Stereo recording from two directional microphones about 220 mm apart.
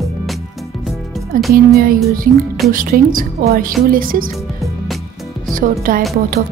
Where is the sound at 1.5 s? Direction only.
40° right (ahead or behind).